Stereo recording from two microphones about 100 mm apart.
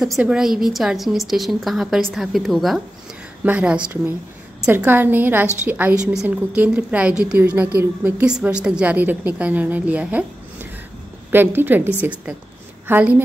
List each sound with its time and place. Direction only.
0.2 s a woman's voice: 5° right (ahead or behind)
3.4 s a woman's voice: 15° right (ahead or behind)